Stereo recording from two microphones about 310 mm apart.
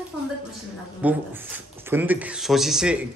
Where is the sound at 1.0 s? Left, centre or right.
Centre.